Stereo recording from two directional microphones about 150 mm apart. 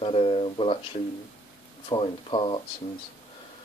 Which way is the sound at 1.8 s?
35° left (ahead or behind).